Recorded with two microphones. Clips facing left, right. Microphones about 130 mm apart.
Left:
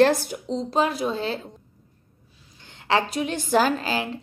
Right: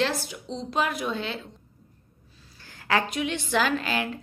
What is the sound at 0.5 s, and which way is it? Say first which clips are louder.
Speech: left 4 dB; 30° left (ahead or behind).